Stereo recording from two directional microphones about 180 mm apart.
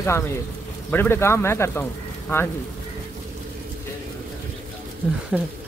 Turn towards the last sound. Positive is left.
turn(degrees=-10)  # may be behind; listen again after turning